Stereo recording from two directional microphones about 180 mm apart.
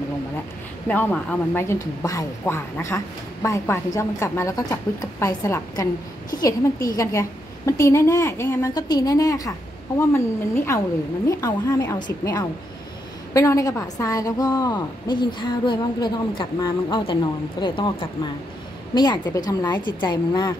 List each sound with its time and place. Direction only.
0.8 s a woman's voice: 10° left (ahead or behind)
7.0 s a woman's voice: 15° left (ahead or behind)